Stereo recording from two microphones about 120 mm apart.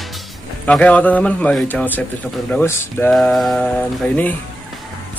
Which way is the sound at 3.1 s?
5° left (ahead or behind).